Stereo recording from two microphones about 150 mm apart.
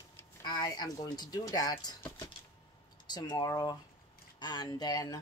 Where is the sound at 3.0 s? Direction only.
30° left (ahead or behind).